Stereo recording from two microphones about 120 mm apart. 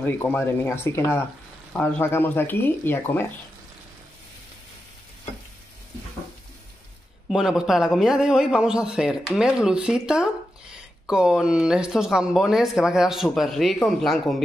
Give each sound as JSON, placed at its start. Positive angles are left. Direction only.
{"t": 0.0, "sound": "speech", "side_deg": 15}
{"t": 7.2, "sound": "a man's voice", "side_deg": -5}